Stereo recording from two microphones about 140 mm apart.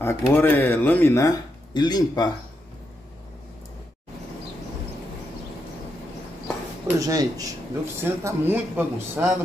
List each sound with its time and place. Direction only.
0.0 s speech: 20° left (ahead or behind)
7.0 s speech: 25° right (ahead or behind)